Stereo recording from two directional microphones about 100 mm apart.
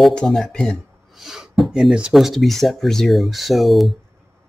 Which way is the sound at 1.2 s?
5° right (ahead or behind).